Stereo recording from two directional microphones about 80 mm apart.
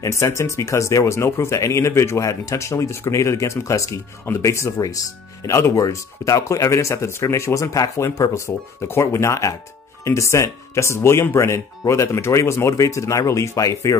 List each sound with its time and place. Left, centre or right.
0.0 s speech: left
7.7 s speech: left